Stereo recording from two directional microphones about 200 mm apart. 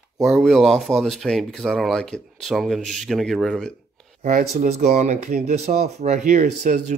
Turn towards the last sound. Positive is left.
turn(degrees=-35)  # may be behind; listen again after turning